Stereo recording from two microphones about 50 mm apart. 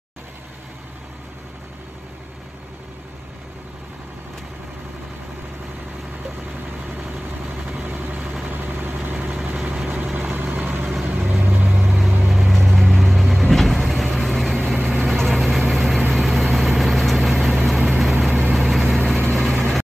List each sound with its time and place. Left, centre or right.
6.8 s vehicle: centre
8.5 s vehicle: right
9.3 s vehicle: centre